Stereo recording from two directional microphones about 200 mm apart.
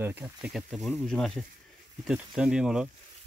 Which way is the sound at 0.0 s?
10° right (ahead or behind).